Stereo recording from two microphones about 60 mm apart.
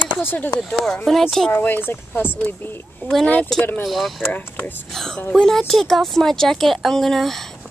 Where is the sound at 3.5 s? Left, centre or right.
Centre.